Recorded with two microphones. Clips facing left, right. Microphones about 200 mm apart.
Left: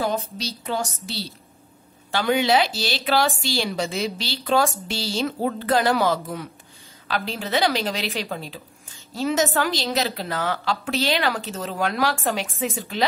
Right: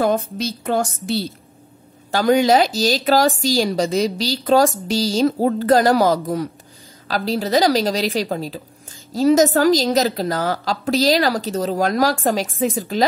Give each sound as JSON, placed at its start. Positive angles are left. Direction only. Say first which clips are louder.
{"t": 0.0, "sound": "a woman's voice", "louder": "right 7 dB", "side_deg": -50}
{"t": 2.0, "sound": "a woman's voice", "louder": "right 6 dB", "side_deg": -40}